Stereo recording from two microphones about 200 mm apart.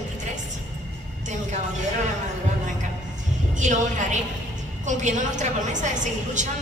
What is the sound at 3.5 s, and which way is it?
A woman's voice, 35° right (ahead or behind).